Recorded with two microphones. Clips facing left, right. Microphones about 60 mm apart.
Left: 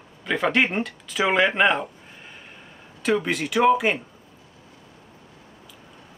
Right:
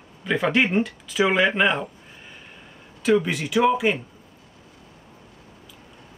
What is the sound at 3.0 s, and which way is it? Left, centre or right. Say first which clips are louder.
Speech: right 2 dB; centre.